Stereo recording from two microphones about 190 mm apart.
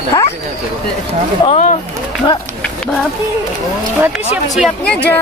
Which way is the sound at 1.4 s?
35° left (ahead or behind).